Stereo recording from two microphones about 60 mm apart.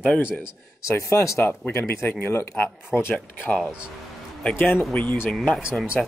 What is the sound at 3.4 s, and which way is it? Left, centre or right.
Speech, centre.